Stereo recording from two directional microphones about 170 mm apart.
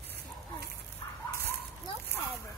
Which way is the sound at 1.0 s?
25° left (ahead or behind).